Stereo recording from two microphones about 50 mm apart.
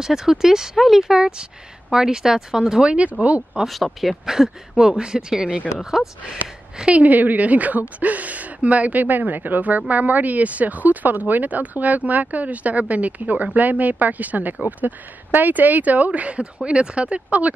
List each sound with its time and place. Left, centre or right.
0.0 s speech: centre
2.8 s speech: right
3.6 s speech: centre
4.3 s speech: centre
6.9 s speech: right